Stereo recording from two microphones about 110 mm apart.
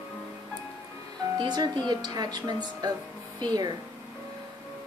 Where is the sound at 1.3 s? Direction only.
40° right (ahead or behind).